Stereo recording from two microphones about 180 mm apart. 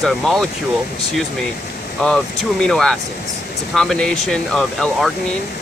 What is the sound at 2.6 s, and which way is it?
Speech, centre (ahead or behind).